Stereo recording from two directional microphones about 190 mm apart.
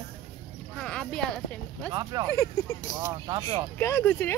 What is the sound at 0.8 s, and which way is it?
Speech, 5° left (ahead or behind).